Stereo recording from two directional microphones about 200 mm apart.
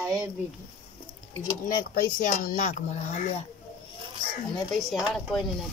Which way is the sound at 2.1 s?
40° left (ahead or behind).